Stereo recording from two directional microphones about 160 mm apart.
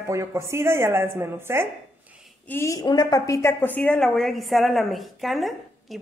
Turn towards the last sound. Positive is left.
turn(degrees=0)  # may be behind; listen again after turning